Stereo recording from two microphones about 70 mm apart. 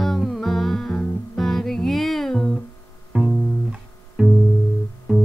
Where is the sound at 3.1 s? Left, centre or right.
Centre.